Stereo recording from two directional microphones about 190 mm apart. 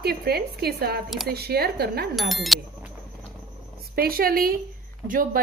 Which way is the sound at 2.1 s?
Centre (ahead or behind).